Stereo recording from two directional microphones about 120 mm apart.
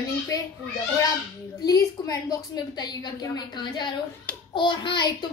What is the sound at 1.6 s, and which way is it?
A woman's voice, 30° left (ahead or behind).